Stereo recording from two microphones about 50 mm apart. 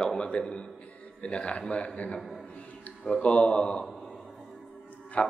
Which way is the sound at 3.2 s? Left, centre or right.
Left.